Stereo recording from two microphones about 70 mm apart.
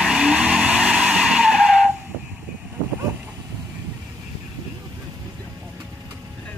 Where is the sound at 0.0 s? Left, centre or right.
Centre.